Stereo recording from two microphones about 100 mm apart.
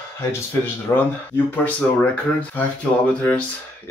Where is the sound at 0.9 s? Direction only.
25° left (ahead or behind).